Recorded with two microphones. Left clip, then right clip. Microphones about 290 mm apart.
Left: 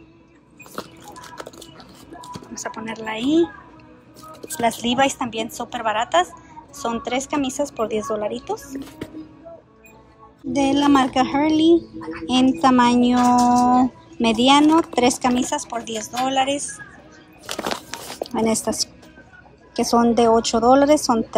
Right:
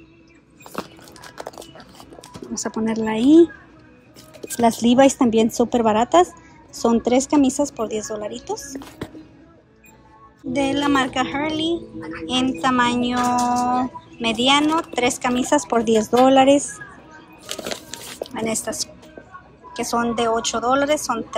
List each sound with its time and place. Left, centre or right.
0.7 s a sound: right
2.5 s a woman's voice: centre
4.8 s a woman's voice: centre
10.5 s speech: centre
17.6 s a sound: centre
19.7 s speech: centre